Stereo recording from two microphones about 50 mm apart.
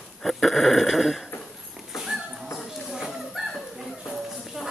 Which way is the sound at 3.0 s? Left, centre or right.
Centre.